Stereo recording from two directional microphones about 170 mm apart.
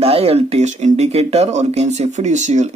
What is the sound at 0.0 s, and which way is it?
Speech, 35° right (ahead or behind).